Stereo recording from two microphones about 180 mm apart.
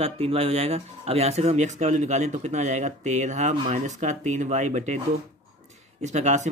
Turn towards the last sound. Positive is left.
turn(degrees=-40)  # may be behind; listen again after turning